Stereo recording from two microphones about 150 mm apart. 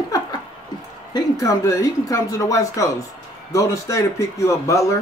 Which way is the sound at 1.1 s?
25° left (ahead or behind).